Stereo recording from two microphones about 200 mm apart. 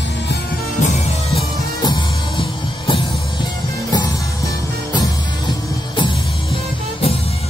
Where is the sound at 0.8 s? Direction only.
30° left (ahead or behind).